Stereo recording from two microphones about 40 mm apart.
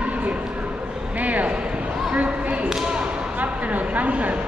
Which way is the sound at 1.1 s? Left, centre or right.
Right.